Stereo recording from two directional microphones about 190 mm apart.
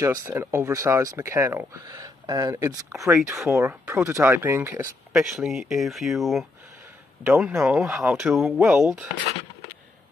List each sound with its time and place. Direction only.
0.0 s speech: 15° right (ahead or behind)